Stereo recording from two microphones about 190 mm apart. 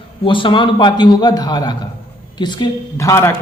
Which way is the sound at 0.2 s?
25° left (ahead or behind).